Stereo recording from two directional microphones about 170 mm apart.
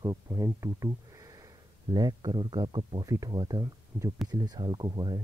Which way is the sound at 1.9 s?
25° right (ahead or behind).